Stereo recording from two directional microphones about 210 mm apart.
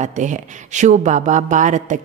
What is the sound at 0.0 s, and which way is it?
A woman's voice, 35° right (ahead or behind).